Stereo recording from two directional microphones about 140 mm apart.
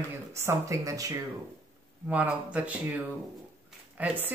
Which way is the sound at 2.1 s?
10° right (ahead or behind).